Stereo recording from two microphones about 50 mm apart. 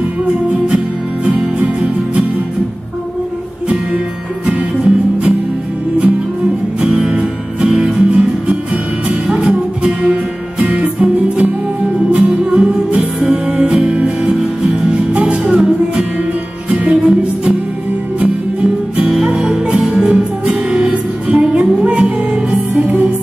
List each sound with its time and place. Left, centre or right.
1.2 s music: right
4.5 s music: right
6.8 s music: right
14.3 s music: centre
14.9 s music: right